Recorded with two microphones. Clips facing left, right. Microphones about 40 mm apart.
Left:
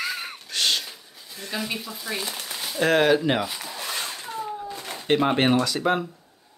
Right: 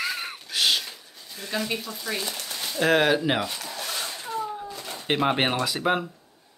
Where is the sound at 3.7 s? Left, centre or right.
Centre.